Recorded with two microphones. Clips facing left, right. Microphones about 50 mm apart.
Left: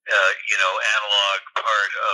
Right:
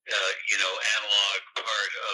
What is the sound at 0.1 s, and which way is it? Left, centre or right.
Speech, left.